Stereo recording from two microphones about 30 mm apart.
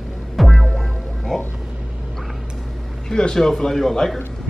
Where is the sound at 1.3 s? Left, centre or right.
Centre.